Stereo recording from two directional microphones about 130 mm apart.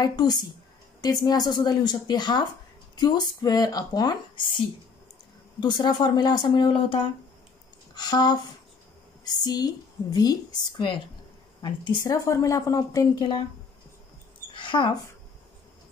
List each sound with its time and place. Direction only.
0.0 s a woman's voice: 30° left (ahead or behind)
14.5 s mouse: 40° left (ahead or behind)